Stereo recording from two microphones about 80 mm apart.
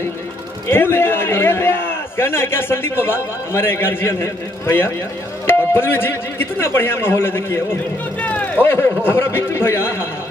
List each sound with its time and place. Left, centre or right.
0.7 s a man's voice: left
8.2 s a man's voice: centre